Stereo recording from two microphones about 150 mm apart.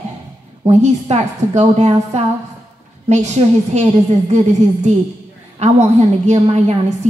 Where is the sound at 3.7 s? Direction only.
50° right (ahead or behind).